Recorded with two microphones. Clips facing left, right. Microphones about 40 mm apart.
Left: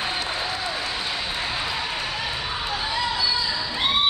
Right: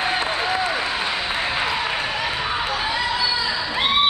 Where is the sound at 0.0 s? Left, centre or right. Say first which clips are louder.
Right 5 dB; right.